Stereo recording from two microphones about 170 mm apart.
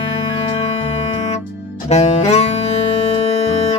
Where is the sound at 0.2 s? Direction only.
35° left (ahead or behind).